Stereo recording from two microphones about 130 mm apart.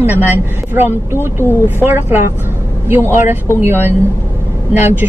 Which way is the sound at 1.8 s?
15° right (ahead or behind).